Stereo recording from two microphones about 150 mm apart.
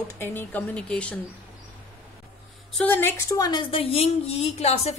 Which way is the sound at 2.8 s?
10° left (ahead or behind).